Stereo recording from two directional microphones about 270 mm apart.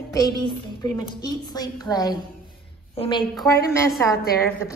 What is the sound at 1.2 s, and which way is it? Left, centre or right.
A woman's voice, centre.